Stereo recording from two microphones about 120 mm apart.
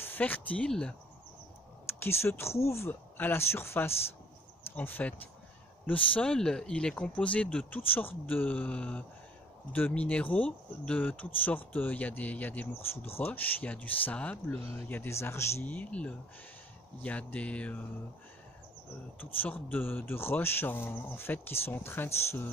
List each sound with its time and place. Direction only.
0.0 s speech: 15° left (ahead or behind)
1.9 s speech: 20° left (ahead or behind)
19.1 s speech: 15° left (ahead or behind)